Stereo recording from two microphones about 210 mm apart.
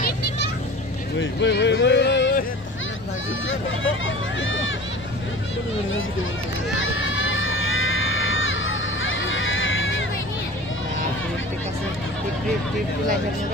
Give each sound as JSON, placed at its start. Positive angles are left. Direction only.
{"t": 1.2, "sound": "speech", "side_deg": 55}
{"t": 3.4, "sound": "speech", "side_deg": 65}
{"t": 6.8, "sound": "crowd", "side_deg": 65}